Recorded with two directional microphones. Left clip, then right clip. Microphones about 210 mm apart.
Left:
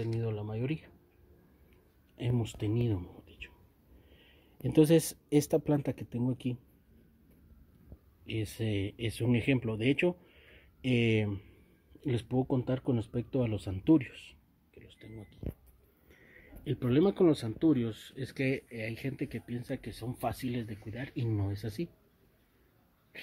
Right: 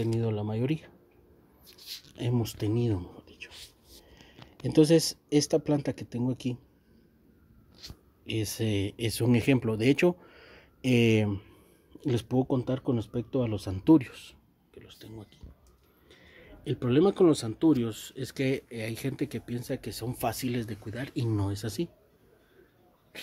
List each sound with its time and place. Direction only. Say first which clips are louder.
0.0 s speech: right 6 dB; 25° right (ahead or behind)
2.1 s speech: right 4 dB; 10° right (ahead or behind)
4.6 s speech: right 3 dB; centre (ahead or behind)
8.3 s speech: right 5 dB; 15° right (ahead or behind)